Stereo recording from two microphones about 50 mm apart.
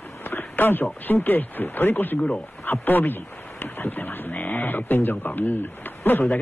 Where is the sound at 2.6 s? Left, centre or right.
Left.